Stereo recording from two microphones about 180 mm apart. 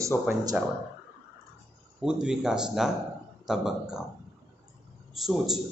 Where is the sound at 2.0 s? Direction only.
5° right (ahead or behind).